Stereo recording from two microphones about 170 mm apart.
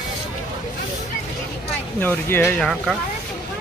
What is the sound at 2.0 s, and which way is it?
Speech, 10° left (ahead or behind).